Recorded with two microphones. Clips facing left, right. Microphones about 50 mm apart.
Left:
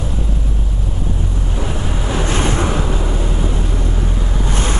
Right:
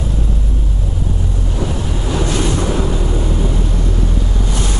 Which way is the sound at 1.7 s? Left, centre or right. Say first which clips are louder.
Right 1 dB; left.